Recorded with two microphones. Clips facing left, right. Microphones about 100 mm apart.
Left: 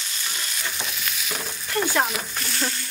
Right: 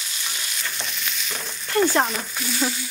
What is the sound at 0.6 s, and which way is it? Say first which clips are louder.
Stir: even; 5° left (ahead or behind).